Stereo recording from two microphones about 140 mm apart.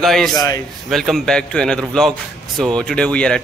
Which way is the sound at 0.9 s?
Centre (ahead or behind).